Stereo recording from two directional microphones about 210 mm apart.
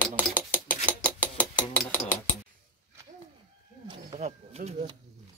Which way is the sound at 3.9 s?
30° right (ahead or behind).